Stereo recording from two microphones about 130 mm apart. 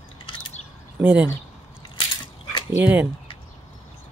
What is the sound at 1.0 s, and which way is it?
Speech, 10° right (ahead or behind).